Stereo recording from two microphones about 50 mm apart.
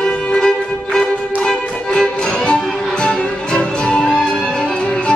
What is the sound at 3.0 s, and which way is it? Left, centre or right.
Music, centre.